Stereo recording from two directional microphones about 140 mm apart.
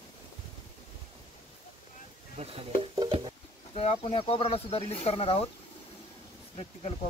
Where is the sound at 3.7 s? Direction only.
45° left (ahead or behind).